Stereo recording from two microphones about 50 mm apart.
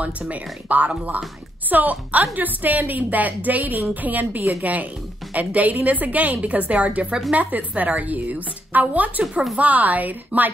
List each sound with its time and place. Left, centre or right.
0.3 s a woman's voice: right